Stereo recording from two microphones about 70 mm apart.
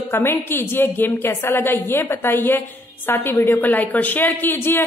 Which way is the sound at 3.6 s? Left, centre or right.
Left.